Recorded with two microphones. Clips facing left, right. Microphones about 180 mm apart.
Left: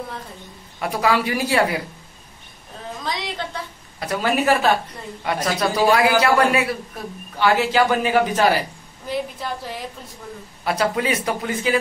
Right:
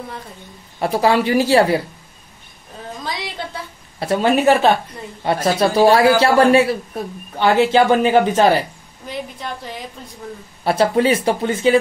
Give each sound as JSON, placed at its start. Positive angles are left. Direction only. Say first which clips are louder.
{"t": 0.7, "sound": "speech", "louder": "right 4 dB", "side_deg": -30}
{"t": 3.0, "sound": "a sound", "louder": "even", "side_deg": -5}
{"t": 4.0, "sound": "speech", "louder": "right 6 dB", "side_deg": -25}
{"t": 9.0, "sound": "a woman's voice", "louder": "left 2 dB", "side_deg": 0}
{"t": 10.6, "sound": "speech", "louder": "right 6 dB", "side_deg": -30}